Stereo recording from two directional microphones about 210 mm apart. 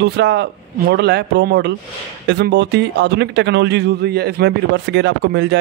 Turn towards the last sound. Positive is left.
turn(degrees=-55)  # may be behind; listen again after turning